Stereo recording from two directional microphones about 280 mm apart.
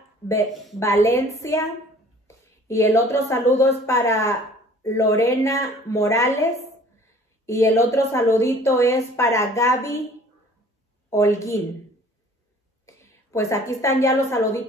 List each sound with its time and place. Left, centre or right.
0.7 s a woman's voice: centre
11.1 s a woman's voice: centre
12.8 s a sound: centre
14.0 s a woman's voice: centre